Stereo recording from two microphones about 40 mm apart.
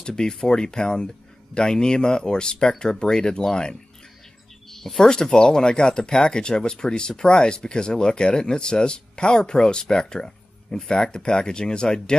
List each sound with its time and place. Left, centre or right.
0.0 s speech: centre